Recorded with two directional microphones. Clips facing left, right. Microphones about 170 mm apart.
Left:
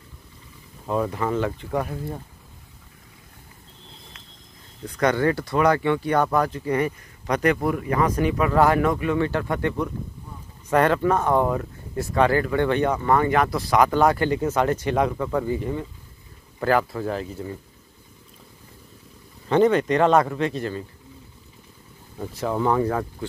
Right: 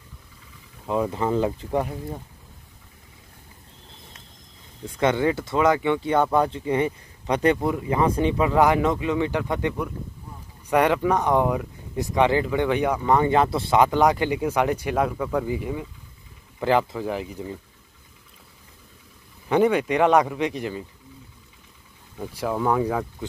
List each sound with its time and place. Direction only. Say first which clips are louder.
0.8 s speech: even; 15° right (ahead or behind)
1.4 s speech: right 2 dB; 25° right (ahead or behind)
5.0 s speech: even; 15° right (ahead or behind)
19.4 s speech: left 1 dB; 10° right (ahead or behind)
22.2 s speech: left 1 dB; 10° right (ahead or behind)